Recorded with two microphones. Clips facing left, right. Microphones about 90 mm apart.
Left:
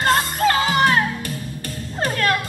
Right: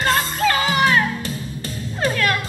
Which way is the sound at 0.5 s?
30° left (ahead or behind).